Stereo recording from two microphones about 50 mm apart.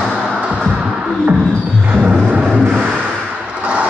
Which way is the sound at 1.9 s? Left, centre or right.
Right.